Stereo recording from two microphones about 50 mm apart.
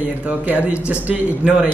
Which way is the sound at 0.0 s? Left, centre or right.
Right.